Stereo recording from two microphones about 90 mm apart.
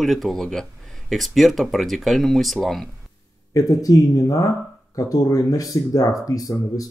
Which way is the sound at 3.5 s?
40° left (ahead or behind).